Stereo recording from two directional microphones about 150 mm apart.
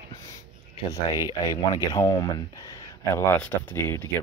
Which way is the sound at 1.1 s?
30° left (ahead or behind).